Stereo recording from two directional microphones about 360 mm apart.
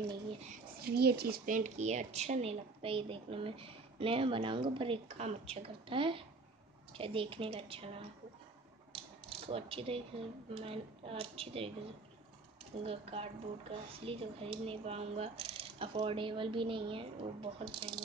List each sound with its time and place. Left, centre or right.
0.1 s speech: centre
9.5 s speech: centre
12.7 s speech: centre